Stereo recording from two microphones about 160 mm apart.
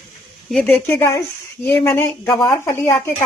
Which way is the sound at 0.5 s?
10° left (ahead or behind).